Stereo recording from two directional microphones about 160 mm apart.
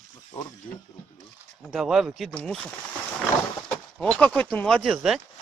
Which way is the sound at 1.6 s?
Centre (ahead or behind).